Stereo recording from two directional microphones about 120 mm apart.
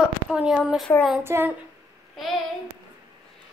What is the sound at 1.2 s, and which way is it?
Speech, 20° right (ahead or behind).